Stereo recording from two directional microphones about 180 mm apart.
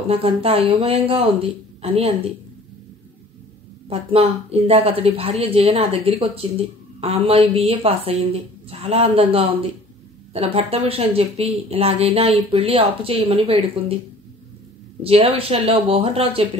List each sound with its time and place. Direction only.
0.1 s a woman's voice: 30° right (ahead or behind)
3.9 s a woman's voice: 35° right (ahead or behind)
15.0 s a woman's voice: 30° right (ahead or behind)